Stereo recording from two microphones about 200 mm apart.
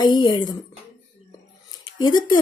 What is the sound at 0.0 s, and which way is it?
Speech, 20° left (ahead or behind).